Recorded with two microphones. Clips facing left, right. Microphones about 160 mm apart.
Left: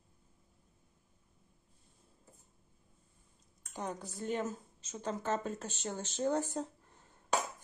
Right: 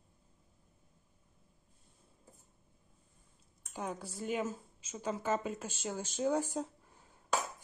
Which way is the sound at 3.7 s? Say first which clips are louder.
Even; 10° right (ahead or behind).